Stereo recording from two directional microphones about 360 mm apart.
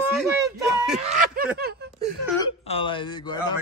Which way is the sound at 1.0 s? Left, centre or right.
Right.